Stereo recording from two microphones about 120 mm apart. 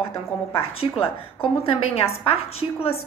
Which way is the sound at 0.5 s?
50° left (ahead or behind).